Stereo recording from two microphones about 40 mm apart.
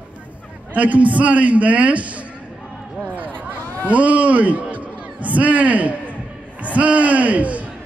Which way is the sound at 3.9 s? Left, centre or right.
Right.